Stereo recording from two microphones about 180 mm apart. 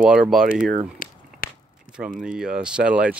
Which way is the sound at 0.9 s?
50° left (ahead or behind).